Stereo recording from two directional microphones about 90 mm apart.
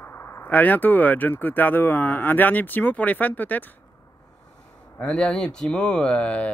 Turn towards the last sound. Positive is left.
turn(degrees=15)  # may be behind; listen again after turning